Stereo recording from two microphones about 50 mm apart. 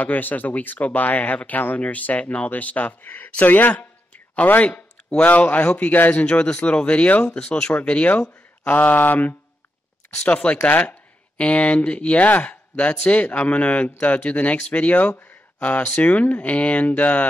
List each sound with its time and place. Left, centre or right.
0.0 s speech: left
8.6 s speech: left
10.2 s speech: left